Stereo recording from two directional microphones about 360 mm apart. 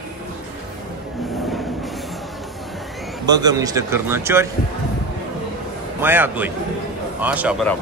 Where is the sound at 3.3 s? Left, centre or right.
Centre.